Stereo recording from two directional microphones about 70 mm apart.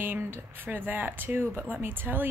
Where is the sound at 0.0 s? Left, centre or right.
Right.